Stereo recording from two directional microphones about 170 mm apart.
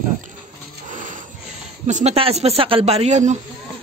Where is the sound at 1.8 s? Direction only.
40° right (ahead or behind).